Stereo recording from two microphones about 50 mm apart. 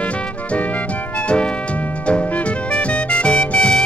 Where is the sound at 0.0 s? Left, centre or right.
Left.